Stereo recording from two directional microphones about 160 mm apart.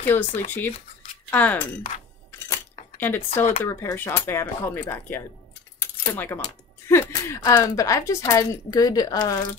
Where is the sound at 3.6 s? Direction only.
15° left (ahead or behind).